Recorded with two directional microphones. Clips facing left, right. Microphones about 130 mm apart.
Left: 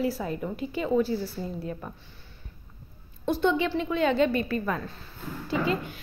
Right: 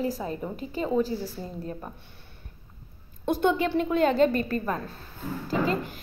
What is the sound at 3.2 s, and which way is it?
A woman's voice, 50° right (ahead or behind).